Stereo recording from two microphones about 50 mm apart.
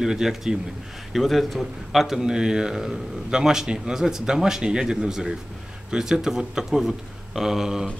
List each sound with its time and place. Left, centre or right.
0.0 s speech: centre